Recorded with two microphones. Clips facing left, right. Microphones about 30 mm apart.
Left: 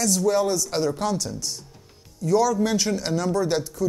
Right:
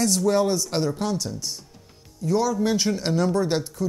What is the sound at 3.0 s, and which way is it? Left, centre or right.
Speech, right.